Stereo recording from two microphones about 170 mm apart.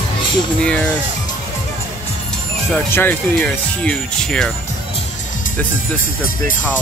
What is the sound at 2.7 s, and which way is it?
Speech, 10° left (ahead or behind).